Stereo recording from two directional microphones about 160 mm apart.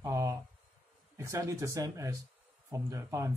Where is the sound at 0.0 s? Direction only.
20° right (ahead or behind).